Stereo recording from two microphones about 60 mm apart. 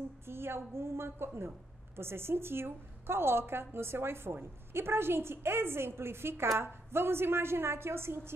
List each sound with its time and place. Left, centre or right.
0.3 s a woman's voice: right